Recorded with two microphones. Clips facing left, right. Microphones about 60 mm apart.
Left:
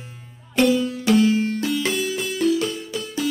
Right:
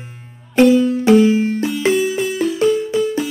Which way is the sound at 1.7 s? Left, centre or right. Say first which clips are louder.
Right 7 dB; centre.